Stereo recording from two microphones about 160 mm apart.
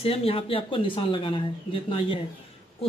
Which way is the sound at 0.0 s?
40° left (ahead or behind).